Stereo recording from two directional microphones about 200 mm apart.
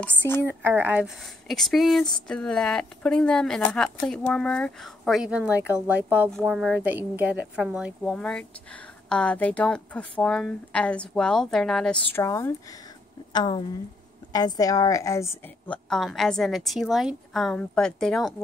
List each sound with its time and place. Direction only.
0.0 s speech: 10° left (ahead or behind)
0.5 s a woman's voice: 10° right (ahead or behind)